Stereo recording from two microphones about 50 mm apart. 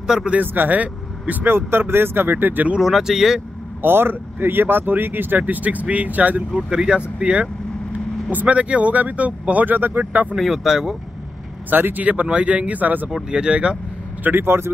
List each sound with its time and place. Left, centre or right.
0.0 s speech: centre
0.3 s speech: right
1.4 s speech: right
2.8 s speech: centre
3.8 s speech: right
6.5 s speech: centre; by 10.2 s right
10.3 s speech: centre
11.7 s speech: right
12.0 s speech: right
13.3 s speech: centre
14.2 s speech: right